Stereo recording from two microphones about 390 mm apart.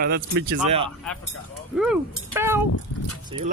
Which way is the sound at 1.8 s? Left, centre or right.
Centre.